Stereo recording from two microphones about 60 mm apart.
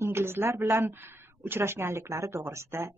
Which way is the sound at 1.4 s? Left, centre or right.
Right.